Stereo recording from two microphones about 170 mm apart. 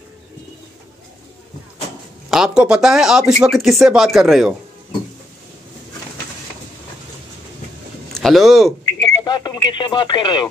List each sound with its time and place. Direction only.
2.3 s speech: 5° right (ahead or behind)
8.1 s speech: centre (ahead or behind)
8.8 s speech: 25° left (ahead or behind)